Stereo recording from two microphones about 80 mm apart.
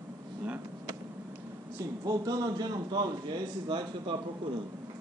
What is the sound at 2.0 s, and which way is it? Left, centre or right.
A man's voice, right.